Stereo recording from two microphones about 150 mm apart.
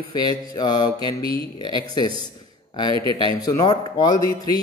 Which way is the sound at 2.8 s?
35° right (ahead or behind).